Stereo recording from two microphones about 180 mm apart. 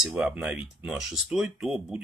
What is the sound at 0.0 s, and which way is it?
Speech, 5° right (ahead or behind).